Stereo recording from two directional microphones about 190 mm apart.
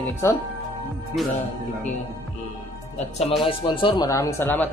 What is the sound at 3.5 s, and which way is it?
Speech, 25° left (ahead or behind).